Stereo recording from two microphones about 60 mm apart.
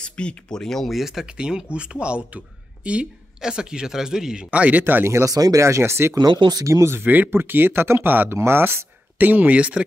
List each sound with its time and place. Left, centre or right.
0.0 s speech: centre
4.5 s speech: right
5.2 s speech: right
6.5 s speech: right
7.0 s speech: right
9.3 s speech: right